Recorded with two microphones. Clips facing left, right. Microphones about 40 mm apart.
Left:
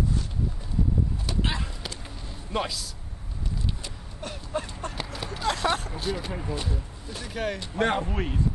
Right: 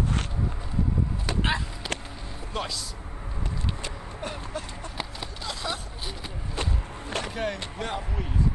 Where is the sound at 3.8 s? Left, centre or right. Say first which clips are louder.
Right 4 dB; right.